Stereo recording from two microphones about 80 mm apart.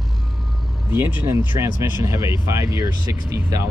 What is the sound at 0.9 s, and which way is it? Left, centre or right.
Speech, right.